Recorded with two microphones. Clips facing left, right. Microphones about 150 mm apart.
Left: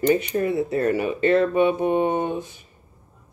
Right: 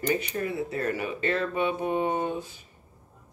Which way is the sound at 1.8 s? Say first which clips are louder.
Left 6 dB; 60° left (ahead or behind).